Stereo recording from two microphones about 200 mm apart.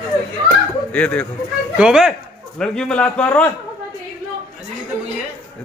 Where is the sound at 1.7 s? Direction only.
5° right (ahead or behind).